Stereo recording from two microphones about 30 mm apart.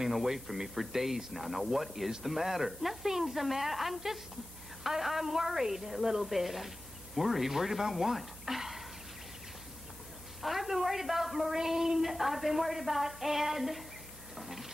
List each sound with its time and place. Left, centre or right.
0.0 s a woman's voice: centre
10.4 s a woman's voice: centre
14.3 s a sound: centre